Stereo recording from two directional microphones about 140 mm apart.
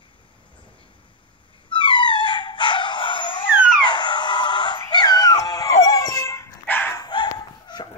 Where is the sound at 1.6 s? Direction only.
35° left (ahead or behind); by 6.9 s 15° left (ahead or behind).